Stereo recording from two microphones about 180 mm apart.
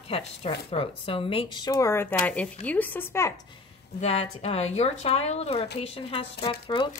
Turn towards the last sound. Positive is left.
turn(degrees=25)  # may be behind; listen again after turning